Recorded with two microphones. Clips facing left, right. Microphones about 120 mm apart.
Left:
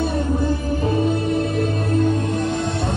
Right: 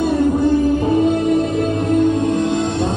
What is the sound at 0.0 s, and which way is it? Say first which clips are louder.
Music: right 6 dB; 20° right (ahead or behind).